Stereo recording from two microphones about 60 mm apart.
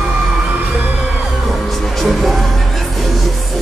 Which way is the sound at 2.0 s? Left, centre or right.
Centre.